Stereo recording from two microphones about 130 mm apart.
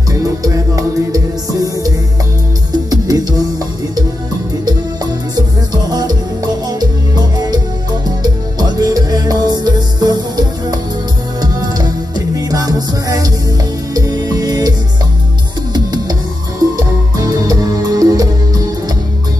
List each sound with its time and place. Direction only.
0.1 s music: 25° right (ahead or behind)
4.6 s music: 30° right (ahead or behind)
15.7 s music: 30° right (ahead or behind)